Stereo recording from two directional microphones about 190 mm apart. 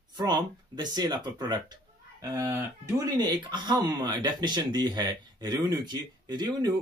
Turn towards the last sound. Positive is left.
turn(degrees=-20)  # may be behind; listen again after turning